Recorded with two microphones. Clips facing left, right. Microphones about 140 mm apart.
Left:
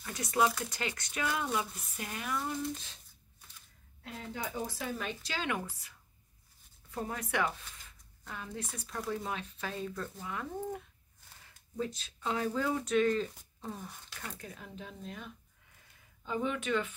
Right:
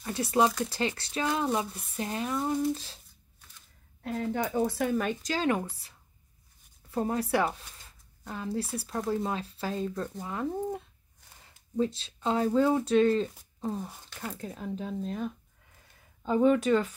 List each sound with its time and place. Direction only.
0.0 s speech: 30° right (ahead or behind)
4.0 s speech: 55° right (ahead or behind); by 16.9 s 35° right (ahead or behind)